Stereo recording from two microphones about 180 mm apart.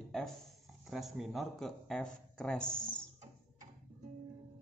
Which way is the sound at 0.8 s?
Centre (ahead or behind).